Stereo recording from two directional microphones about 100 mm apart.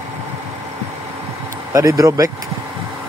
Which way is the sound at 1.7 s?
35° right (ahead or behind).